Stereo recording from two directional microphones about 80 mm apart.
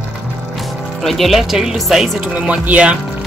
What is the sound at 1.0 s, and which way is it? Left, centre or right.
Speech, centre.